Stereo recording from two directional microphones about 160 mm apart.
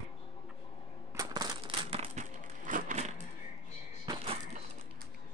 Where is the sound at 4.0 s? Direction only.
30° right (ahead or behind).